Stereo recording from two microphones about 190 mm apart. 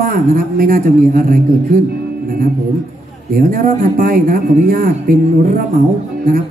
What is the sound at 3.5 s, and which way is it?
A man's voice, 45° right (ahead or behind).